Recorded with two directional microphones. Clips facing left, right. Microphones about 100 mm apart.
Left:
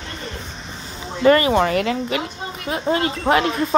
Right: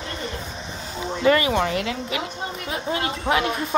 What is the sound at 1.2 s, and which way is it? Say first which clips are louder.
Speech: left 5 dB; 45° left (ahead or behind).